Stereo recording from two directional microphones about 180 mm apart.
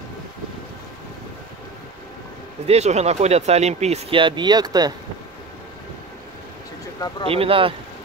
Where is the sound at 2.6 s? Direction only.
35° right (ahead or behind); by 4.9 s 20° right (ahead or behind).